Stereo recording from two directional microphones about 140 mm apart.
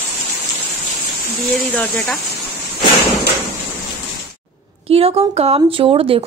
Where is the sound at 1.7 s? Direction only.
5° left (ahead or behind).